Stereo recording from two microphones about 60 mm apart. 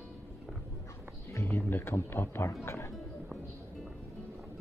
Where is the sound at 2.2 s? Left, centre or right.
Left.